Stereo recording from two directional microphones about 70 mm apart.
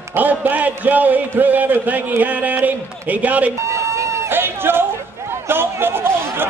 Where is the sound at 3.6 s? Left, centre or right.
Right.